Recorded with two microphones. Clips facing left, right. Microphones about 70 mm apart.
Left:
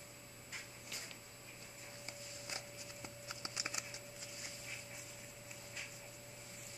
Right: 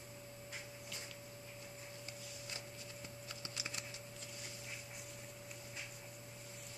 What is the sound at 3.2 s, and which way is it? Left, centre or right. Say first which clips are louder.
Computer keyboard: left 3 dB; left.